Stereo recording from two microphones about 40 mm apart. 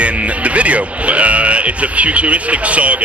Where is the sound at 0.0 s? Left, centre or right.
Right.